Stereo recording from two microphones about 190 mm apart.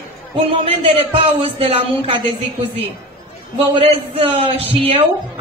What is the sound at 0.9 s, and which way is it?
Speech, 30° right (ahead or behind).